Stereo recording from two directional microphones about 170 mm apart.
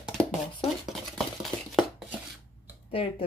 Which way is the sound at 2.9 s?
35° left (ahead or behind).